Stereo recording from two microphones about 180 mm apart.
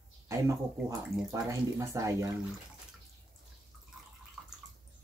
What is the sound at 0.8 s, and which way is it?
Speech, 15° right (ahead or behind).